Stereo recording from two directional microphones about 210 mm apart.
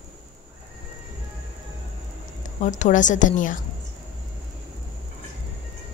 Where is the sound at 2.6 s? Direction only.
35° left (ahead or behind).